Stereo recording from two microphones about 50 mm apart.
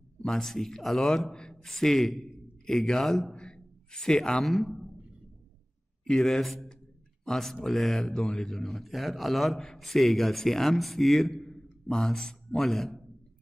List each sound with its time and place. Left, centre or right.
0.2 s a man's voice: centre
3.3 s a sound: centre
4.5 s a man's voice: centre
6.0 s a man's voice: centre